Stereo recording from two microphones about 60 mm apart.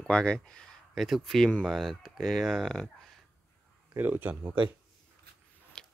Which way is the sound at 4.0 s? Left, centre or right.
Right.